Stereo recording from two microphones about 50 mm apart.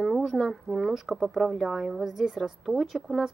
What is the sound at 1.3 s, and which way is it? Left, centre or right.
Speech, centre.